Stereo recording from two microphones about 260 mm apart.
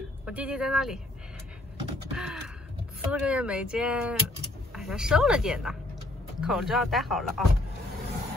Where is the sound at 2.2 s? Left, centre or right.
Centre.